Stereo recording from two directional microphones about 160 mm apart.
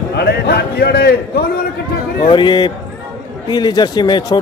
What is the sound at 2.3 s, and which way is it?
A man's voice, 30° left (ahead or behind).